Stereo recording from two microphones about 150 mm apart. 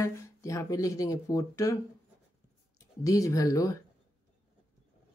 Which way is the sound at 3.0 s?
20° left (ahead or behind).